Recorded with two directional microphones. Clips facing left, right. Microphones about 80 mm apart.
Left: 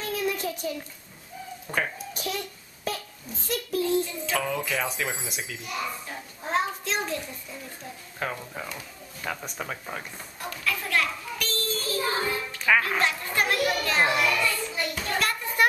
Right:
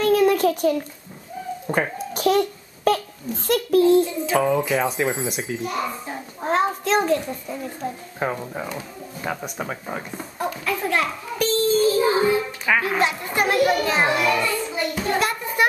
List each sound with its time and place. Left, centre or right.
0.0 s a sound: right
1.7 s a child's voice: right
2.1 s babbling: right
3.4 s a child's voice: right
4.3 s speech: right
6.4 s a child's voice: right
8.2 s a child's voice: right
15.0 s a sound: centre